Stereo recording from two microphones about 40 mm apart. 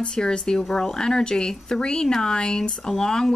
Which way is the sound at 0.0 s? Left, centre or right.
Left.